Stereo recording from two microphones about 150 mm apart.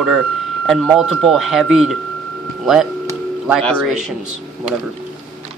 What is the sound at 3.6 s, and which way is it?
Speech, 5° left (ahead or behind).